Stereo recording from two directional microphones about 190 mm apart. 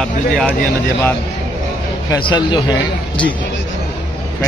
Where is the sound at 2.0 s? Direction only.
25° left (ahead or behind).